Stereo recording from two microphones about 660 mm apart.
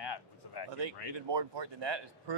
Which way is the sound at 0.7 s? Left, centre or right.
Right.